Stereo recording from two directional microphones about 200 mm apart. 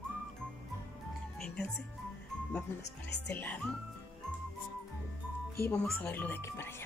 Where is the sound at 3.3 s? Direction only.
10° left (ahead or behind).